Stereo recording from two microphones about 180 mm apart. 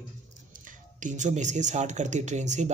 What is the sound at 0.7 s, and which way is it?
Speech, 45° right (ahead or behind).